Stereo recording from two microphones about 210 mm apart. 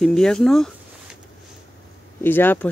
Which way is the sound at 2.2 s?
10° left (ahead or behind).